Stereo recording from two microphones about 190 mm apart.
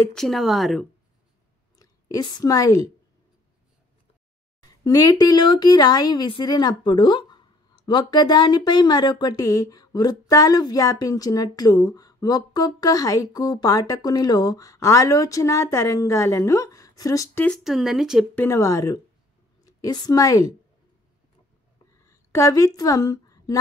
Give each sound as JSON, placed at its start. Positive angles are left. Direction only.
{"t": 0.0, "sound": "speech", "side_deg": 0}
{"t": 1.8, "sound": "a woman's voice", "side_deg": 20}
{"t": 4.8, "sound": "a woman's voice", "side_deg": 20}
{"t": 17.6, "sound": "speech", "side_deg": 0}
{"t": 18.3, "sound": "a woman's voice", "side_deg": 15}
{"t": 22.0, "sound": "a woman's voice", "side_deg": 15}